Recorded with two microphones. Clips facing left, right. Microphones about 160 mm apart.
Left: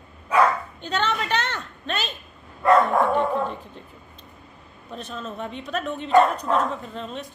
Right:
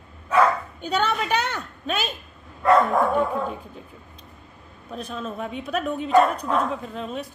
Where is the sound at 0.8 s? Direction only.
5° right (ahead or behind).